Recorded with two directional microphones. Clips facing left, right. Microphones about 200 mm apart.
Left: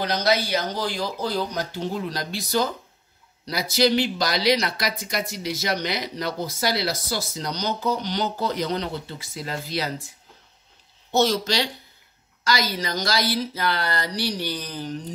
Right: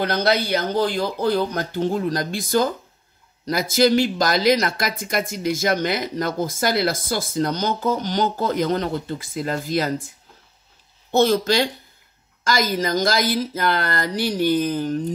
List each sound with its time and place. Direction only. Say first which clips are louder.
0.0 s speech: right 3 dB; 55° right (ahead or behind)